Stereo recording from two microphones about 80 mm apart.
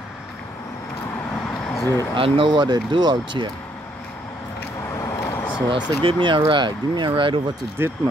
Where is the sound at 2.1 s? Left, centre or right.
Right.